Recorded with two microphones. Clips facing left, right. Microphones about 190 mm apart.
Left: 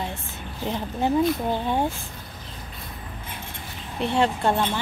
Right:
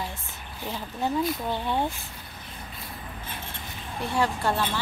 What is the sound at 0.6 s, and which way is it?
A woman's voice, 20° left (ahead or behind).